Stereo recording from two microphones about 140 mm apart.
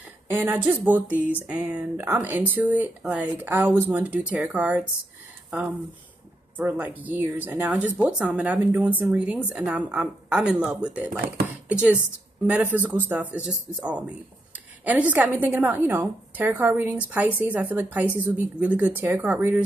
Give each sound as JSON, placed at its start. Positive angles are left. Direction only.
{"t": 0.3, "sound": "speech", "side_deg": -15}
{"t": 6.5, "sound": "speech", "side_deg": -15}
{"t": 11.1, "sound": "speech", "side_deg": -90}
{"t": 11.7, "sound": "speech", "side_deg": -10}